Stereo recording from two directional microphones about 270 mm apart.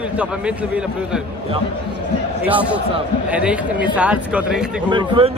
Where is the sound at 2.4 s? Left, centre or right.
Centre.